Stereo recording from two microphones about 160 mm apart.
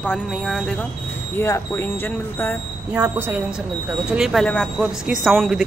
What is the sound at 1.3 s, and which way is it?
Speech, 15° left (ahead or behind).